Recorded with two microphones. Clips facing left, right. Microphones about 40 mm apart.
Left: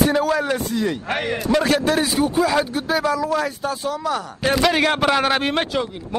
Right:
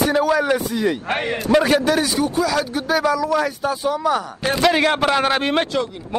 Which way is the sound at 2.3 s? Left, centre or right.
Left.